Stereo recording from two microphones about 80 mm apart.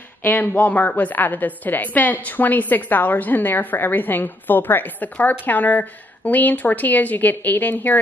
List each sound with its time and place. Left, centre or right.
0.2 s a woman's voice: left